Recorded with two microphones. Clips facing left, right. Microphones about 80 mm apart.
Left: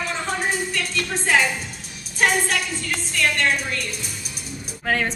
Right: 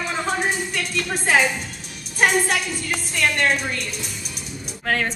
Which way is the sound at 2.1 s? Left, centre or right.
Centre.